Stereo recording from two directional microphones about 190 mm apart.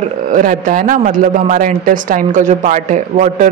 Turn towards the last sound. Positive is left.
turn(degrees=-40)  # may be behind; listen again after turning